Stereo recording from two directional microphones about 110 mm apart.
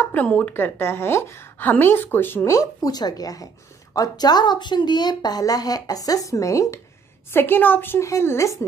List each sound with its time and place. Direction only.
0.0 s a woman's voice: 15° left (ahead or behind)